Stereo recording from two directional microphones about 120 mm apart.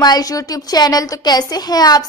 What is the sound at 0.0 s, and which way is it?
A woman's voice, 30° left (ahead or behind).